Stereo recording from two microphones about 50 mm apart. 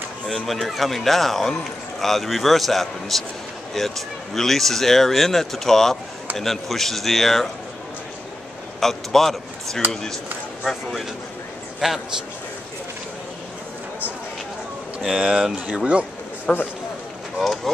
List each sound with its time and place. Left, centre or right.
0.3 s a man's voice: centre
8.7 s a man's voice: centre
11.8 s a man's voice: centre
15.0 s speech: centre
16.5 s speech: centre